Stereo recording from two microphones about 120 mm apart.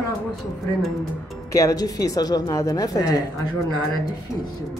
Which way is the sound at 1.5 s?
25° left (ahead or behind).